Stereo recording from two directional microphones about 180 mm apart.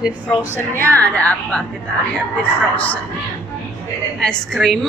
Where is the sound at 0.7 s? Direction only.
10° left (ahead or behind).